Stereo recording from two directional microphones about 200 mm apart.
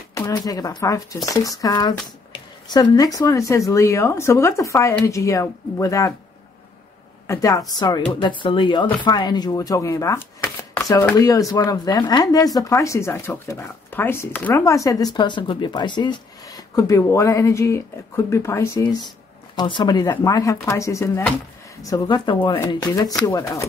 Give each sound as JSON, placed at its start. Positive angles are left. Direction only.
{"t": 0.1, "sound": "speech", "side_deg": 20}
{"t": 7.2, "sound": "speech", "side_deg": 15}
{"t": 21.8, "sound": "speech", "side_deg": 20}